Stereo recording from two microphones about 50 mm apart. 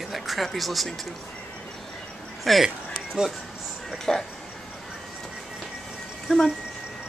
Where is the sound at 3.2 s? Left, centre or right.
Centre.